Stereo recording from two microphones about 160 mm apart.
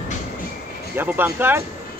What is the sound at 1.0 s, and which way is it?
Speech, 15° right (ahead or behind).